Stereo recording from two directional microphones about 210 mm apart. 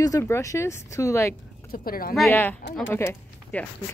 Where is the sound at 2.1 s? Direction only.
5° left (ahead or behind).